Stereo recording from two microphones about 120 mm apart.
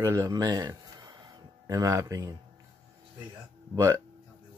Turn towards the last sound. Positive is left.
turn(degrees=-25)  # may be behind; listen again after turning